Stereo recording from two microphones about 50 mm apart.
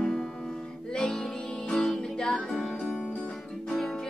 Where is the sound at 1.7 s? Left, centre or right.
Centre.